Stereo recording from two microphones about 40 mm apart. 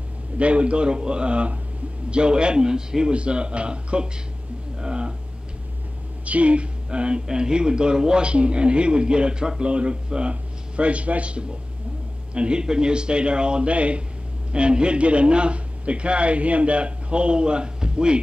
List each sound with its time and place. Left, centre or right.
0.4 s a man's voice: right
4.7 s a sound: right
6.2 s a woman's voice: right